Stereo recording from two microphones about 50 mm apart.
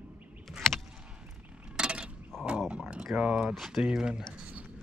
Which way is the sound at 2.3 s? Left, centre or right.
Centre.